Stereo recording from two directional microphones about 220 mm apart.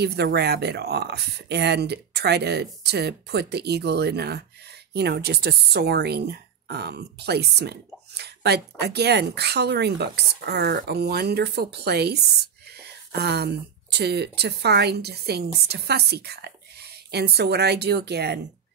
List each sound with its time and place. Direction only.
0.0 s speech: 50° right (ahead or behind)